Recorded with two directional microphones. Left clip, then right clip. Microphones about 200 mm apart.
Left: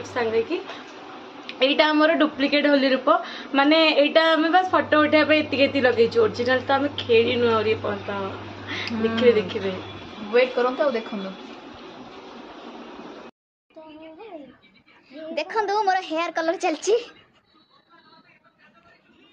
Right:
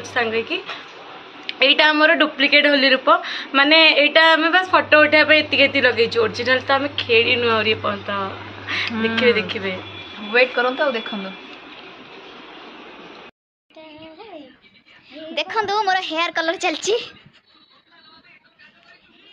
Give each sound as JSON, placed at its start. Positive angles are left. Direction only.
{"t": 0.0, "sound": "a woman's voice", "side_deg": 15}
{"t": 10.3, "sound": "a woman's voice", "side_deg": -5}
{"t": 15.3, "sound": "a woman's voice", "side_deg": 5}